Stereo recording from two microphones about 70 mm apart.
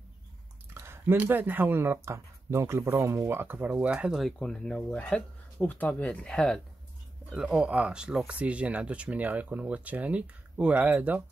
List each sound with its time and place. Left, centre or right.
0.7 s a sound: right
1.1 s speech: right
4.4 s speech: centre
5.6 s speech: left; by 6.6 s centre
7.4 s speech: centre